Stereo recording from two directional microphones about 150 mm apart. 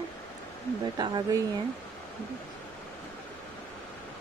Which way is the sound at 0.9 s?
30° right (ahead or behind).